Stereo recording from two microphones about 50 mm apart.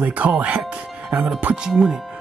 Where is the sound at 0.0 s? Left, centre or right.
Right.